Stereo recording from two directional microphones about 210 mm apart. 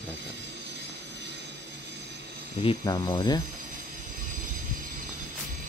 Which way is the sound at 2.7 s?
20° left (ahead or behind).